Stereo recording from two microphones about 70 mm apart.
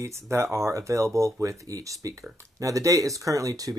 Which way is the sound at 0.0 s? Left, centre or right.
Right.